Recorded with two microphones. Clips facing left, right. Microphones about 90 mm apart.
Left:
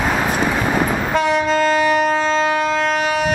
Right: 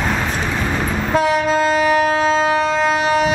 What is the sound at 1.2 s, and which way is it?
Train, centre (ahead or behind).